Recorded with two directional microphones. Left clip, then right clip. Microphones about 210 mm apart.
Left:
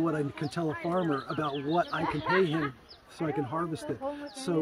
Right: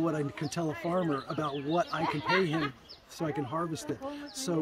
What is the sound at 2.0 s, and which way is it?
Speech, 40° right (ahead or behind).